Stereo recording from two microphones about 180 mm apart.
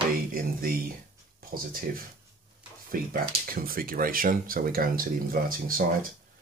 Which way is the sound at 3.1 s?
55° right (ahead or behind).